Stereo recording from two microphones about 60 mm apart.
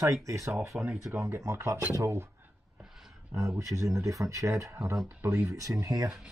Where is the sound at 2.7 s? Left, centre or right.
Centre.